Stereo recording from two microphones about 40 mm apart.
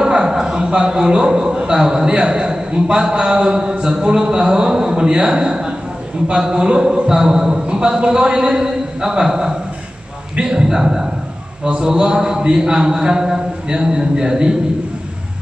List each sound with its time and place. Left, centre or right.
0.0 s a man's voice: centre